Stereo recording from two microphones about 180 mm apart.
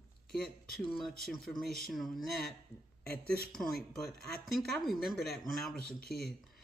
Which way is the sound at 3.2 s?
60° right (ahead or behind).